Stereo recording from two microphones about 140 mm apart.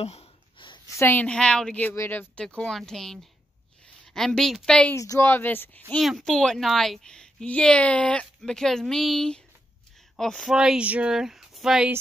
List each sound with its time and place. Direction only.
0.0 s a sound: 50° left (ahead or behind)
0.9 s a woman's voice: 15° left (ahead or behind)
4.9 s a woman's voice: 25° left (ahead or behind)
5.9 s a woman's voice: centre (ahead or behind)